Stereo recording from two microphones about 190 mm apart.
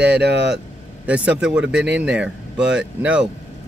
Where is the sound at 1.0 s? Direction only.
5° right (ahead or behind).